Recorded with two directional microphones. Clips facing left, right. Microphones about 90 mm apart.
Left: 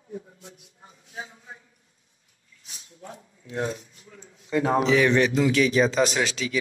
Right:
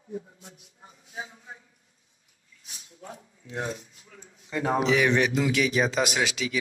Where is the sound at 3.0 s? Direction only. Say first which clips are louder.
Left 1 dB; 25° right (ahead or behind).